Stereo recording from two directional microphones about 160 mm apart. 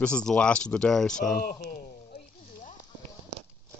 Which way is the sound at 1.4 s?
65° left (ahead or behind).